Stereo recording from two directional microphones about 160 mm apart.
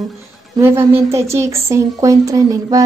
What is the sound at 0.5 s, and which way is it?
A woman's voice, 15° right (ahead or behind).